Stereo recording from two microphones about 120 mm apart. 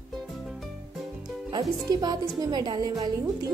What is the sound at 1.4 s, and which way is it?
Speech, 35° right (ahead or behind).